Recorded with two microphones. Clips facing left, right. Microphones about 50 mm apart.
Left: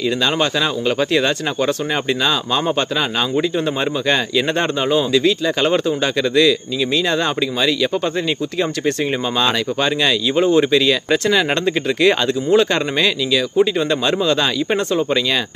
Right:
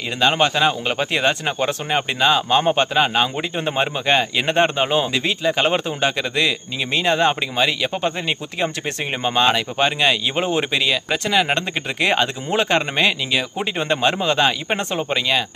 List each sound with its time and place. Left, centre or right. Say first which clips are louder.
0.2 s speech: right 6 dB; right
9.4 s speech: right 2 dB; right
10.9 s speech: left 4 dB; centre
12.0 s speech: left 3 dB; right